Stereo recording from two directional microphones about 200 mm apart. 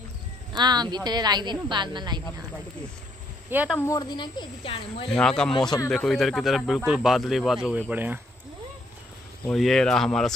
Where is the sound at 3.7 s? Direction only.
15° left (ahead or behind).